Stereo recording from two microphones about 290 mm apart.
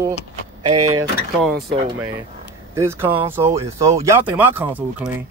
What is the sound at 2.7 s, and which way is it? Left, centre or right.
Speech, centre.